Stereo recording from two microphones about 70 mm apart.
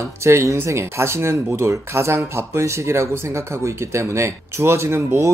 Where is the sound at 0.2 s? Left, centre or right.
Right.